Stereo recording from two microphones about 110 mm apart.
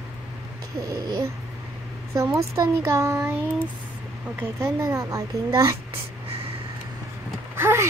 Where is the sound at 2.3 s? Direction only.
30° right (ahead or behind).